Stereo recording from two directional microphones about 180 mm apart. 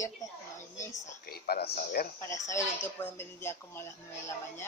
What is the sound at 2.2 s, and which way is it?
Speech, 15° left (ahead or behind).